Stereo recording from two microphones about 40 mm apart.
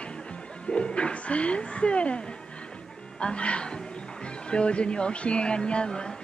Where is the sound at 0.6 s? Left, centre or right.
Left.